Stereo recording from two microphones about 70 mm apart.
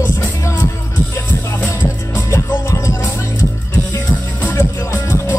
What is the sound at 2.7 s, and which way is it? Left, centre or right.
Music, left.